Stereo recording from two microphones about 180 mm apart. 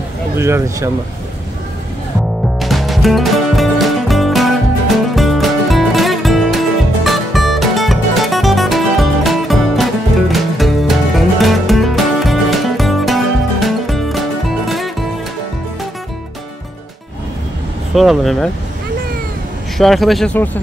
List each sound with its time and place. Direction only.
0.4 s speech: 15° right (ahead or behind)
2.6 s music: centre (ahead or behind)
17.9 s speech: centre (ahead or behind)
19.8 s speech: centre (ahead or behind)